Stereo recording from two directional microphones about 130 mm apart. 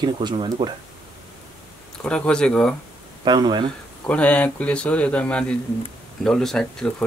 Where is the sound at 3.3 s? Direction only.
35° right (ahead or behind).